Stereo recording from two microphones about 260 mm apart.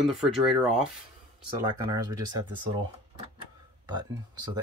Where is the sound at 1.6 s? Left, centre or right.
Centre.